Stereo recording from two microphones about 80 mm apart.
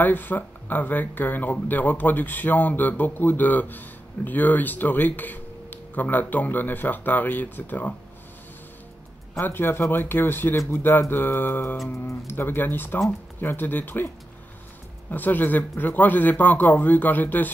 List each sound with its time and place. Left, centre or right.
0.0 s speech: left
9.4 s speech: left
11.8 s speech: centre
12.3 s speech: left
15.0 s speech: left